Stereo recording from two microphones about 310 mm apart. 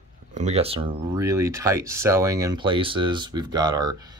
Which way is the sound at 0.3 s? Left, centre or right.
Right.